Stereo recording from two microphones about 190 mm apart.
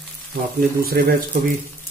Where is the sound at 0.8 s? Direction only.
50° right (ahead or behind).